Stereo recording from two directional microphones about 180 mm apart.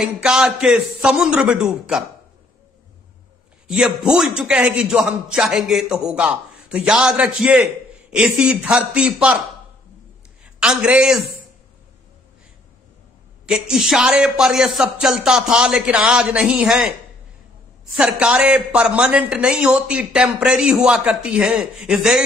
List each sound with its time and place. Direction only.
0.0 s a man's voice: 5° right (ahead or behind)
3.6 s a man's voice: 5° right (ahead or behind)
10.6 s a man's voice: 5° right (ahead or behind)
13.5 s a man's voice: 5° right (ahead or behind)
17.9 s a man's voice: 5° right (ahead or behind)